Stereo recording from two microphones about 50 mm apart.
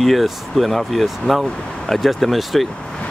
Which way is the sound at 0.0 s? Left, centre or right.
Centre.